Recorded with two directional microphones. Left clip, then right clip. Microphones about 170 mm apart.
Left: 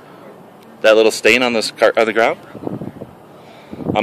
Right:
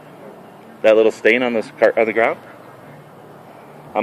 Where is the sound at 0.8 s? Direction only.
25° left (ahead or behind).